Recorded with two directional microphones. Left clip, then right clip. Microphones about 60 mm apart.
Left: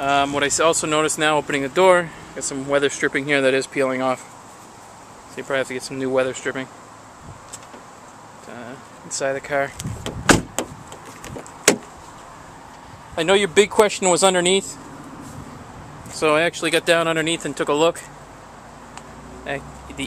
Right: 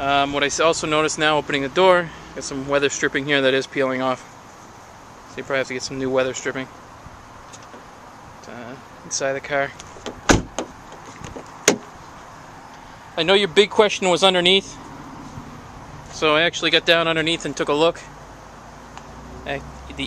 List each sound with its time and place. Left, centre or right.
0.0 s speech: centre
5.3 s speech: centre
5.8 s speech: right
8.5 s a sound: centre
9.1 s speech: centre
10.0 s door: centre
11.2 s vehicle: centre
13.1 s speech: centre
16.1 s speech: centre
17.2 s speech: centre
19.4 s vehicle: centre